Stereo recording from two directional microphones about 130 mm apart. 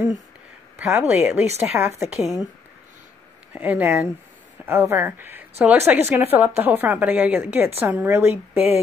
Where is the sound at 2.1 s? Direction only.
Centre (ahead or behind).